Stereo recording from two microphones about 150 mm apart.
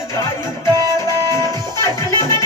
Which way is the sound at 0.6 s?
25° right (ahead or behind).